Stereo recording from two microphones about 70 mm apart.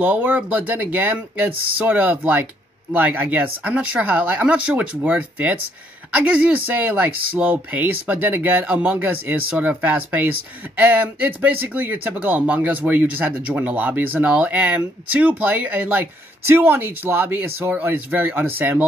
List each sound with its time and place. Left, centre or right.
0.0 s speech: right